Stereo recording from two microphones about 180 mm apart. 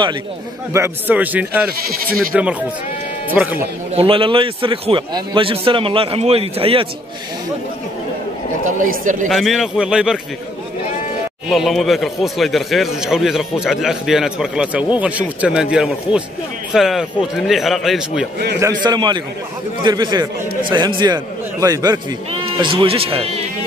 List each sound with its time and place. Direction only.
0.7 s a man's voice: 10° right (ahead or behind)
3.9 s a man's voice: 30° right (ahead or behind)
8.6 s speech: 45° right (ahead or behind)
9.3 s speech: centre (ahead or behind)
11.4 s speech: centre (ahead or behind)
18.6 s a man's voice: 20° right (ahead or behind)